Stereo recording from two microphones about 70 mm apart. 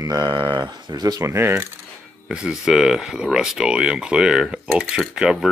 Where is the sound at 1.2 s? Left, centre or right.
Right.